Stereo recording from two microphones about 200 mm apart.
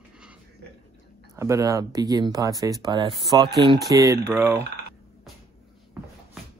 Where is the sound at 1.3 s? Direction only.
15° right (ahead or behind).